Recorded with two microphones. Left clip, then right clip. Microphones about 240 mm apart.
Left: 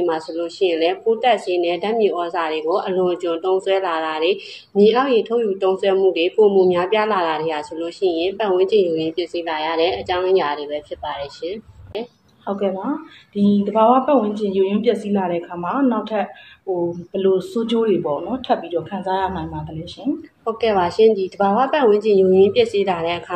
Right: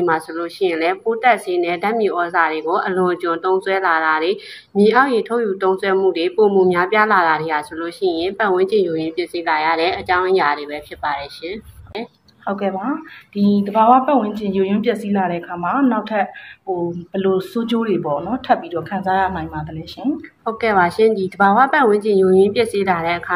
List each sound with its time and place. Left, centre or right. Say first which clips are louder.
0.0 s a woman's voice: right 2 dB; right
20.6 s a woman's voice: right 1 dB; right